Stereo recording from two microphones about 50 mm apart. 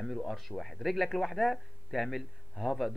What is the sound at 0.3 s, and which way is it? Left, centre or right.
Speech, centre.